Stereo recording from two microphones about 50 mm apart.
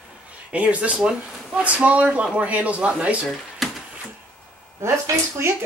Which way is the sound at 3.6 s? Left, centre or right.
Centre.